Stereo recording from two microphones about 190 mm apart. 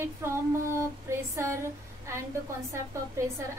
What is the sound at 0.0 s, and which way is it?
A woman's voice, 15° right (ahead or behind).